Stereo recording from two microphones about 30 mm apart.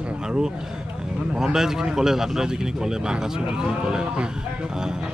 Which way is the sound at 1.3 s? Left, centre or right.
Centre.